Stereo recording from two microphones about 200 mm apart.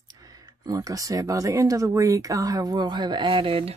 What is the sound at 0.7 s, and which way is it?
Speech, 15° right (ahead or behind).